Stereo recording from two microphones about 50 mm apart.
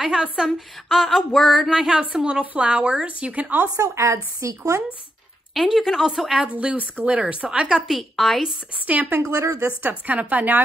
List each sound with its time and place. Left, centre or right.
0.0 s speech: centre
0.8 s a sound: centre
1.7 s speech: centre; by 3.7 s right
3.9 s a woman's voice: right
5.8 s speech: centre
6.5 s speech: right
7.9 s a sound: centre
8.8 s a woman's voice: right
9.2 s a woman's voice: right
9.8 s a woman's voice: right